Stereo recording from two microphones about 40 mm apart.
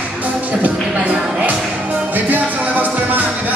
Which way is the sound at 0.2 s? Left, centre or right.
Right.